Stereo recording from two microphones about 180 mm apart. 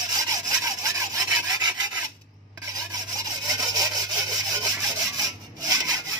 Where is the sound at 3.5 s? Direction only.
20° right (ahead or behind).